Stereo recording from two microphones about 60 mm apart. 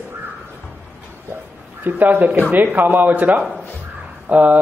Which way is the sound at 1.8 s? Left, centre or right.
Right.